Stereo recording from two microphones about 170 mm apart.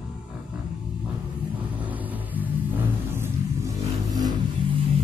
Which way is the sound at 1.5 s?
10° right (ahead or behind).